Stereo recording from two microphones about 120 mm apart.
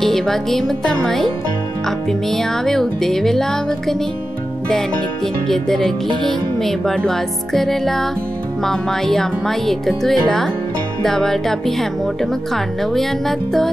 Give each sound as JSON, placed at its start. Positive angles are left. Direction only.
{"t": 0.0, "sound": "speech", "side_deg": 5}